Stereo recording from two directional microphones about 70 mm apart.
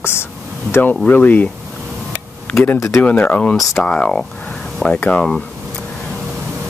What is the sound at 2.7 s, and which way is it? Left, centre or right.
Speech, left.